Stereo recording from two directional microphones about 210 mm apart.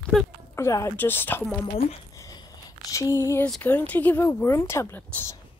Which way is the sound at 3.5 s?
10° left (ahead or behind).